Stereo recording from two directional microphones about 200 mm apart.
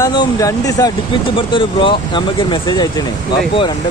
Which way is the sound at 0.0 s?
20° left (ahead or behind).